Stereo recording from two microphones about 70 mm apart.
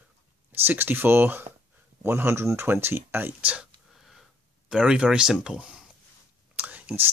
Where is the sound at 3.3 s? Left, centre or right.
Centre.